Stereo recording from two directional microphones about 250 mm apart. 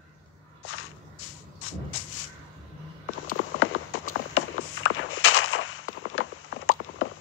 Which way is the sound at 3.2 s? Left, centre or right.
Left.